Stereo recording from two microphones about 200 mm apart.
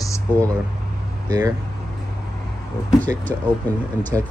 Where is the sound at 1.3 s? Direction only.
15° right (ahead or behind).